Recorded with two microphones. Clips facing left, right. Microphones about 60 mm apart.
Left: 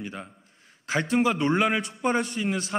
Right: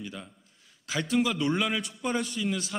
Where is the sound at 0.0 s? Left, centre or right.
Left.